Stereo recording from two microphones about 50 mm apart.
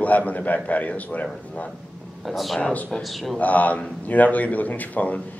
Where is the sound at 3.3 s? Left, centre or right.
Left.